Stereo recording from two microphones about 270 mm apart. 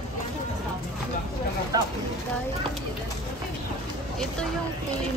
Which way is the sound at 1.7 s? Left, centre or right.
Centre.